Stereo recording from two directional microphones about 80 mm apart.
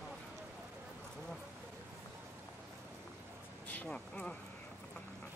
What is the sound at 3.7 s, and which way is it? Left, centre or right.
Speech, centre.